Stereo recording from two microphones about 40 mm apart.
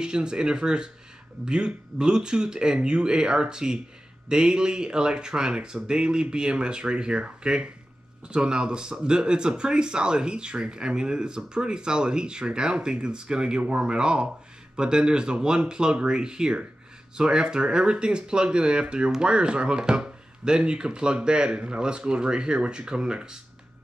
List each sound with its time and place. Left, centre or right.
0.0 s speech: right